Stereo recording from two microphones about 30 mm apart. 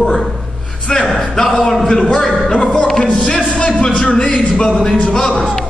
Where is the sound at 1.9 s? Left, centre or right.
Left.